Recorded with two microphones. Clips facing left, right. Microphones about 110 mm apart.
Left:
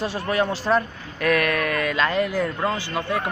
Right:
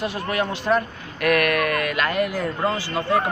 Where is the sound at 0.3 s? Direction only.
Centre (ahead or behind).